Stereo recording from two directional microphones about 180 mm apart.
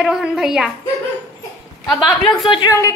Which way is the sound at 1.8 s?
20° left (ahead or behind).